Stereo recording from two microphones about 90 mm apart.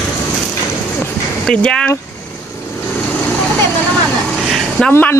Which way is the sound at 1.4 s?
10° left (ahead or behind).